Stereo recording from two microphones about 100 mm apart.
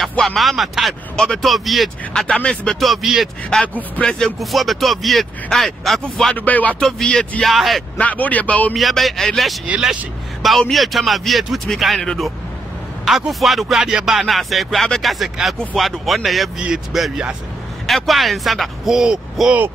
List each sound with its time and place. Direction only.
0.2 s speech: centre (ahead or behind)
3.4 s speech: 10° left (ahead or behind)
6.3 s speech: 15° left (ahead or behind)
6.8 s speech: 5° left (ahead or behind)
8.0 s speech: 15° left (ahead or behind)
8.7 s speech: centre (ahead or behind)